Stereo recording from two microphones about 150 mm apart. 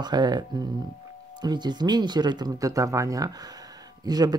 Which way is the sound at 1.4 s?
30° right (ahead or behind).